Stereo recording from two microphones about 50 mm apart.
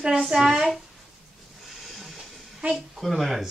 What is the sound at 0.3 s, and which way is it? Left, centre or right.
Speech, centre.